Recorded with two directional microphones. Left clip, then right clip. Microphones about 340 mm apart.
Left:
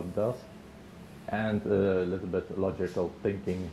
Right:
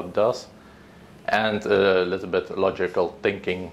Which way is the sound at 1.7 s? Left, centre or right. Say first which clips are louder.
Right 8 dB; right.